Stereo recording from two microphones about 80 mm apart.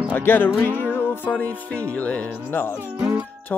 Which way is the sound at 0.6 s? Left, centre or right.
Left.